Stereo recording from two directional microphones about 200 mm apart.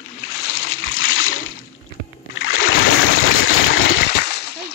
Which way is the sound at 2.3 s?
85° left.